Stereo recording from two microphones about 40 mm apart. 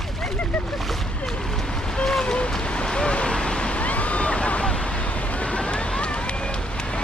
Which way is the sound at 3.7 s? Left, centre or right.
Left.